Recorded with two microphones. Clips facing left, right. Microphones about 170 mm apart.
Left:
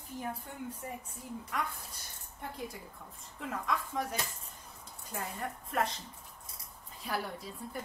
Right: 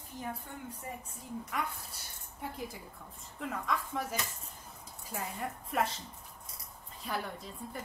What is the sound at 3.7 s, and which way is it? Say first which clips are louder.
A woman's voice: left 1 dB; centre (ahead or behind).